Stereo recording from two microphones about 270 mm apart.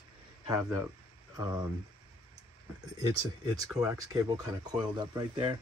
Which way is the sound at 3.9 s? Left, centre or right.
Centre.